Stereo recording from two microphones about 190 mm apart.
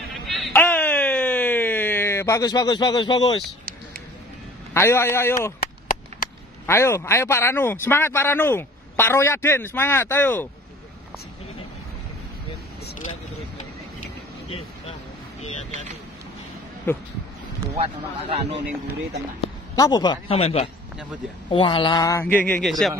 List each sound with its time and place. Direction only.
0.1 s baby cry: centre (ahead or behind)
0.5 s a sound: 10° left (ahead or behind)
4.7 s speech: 15° left (ahead or behind)
5.9 s chop: 50° left (ahead or behind)
6.6 s speech: 15° left (ahead or behind)
15.7 s speech: 35° right (ahead or behind)
16.9 s speech: 10° left (ahead or behind)
17.7 s speech: 30° right (ahead or behind)
19.7 s speech: 20° left (ahead or behind); by 22.9 s centre (ahead or behind)